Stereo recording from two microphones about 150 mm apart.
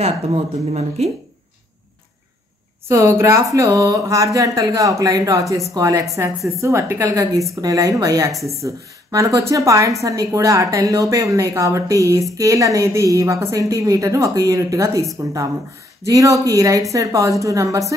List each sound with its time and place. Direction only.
0.0 s speech: 45° right (ahead or behind)
2.9 s a woman's voice: 20° right (ahead or behind)
16.1 s a woman's voice: 20° right (ahead or behind)